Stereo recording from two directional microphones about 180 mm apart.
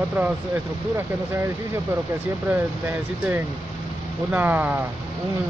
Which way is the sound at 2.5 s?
10° right (ahead or behind).